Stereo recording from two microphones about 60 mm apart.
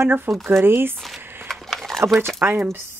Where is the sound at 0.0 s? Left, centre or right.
Right.